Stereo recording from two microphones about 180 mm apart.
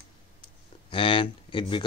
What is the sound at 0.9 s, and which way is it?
Speech, 30° left (ahead or behind).